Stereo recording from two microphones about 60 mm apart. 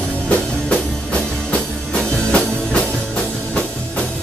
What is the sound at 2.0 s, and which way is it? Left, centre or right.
Music, centre.